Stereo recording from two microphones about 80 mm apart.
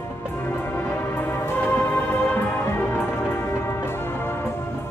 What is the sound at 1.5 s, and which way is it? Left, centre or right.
Music, left.